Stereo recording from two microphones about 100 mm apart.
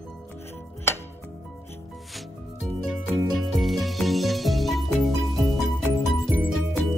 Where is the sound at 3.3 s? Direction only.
Centre (ahead or behind).